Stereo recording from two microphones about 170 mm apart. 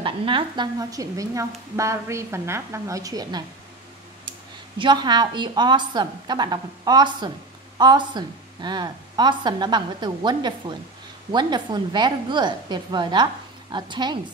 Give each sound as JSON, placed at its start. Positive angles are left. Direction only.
{"t": 0.0, "sound": "a woman's voice", "side_deg": -30}
{"t": 4.7, "sound": "a woman's voice", "side_deg": -25}